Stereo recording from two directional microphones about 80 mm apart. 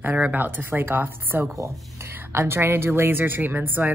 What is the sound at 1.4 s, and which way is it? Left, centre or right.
Speech, right.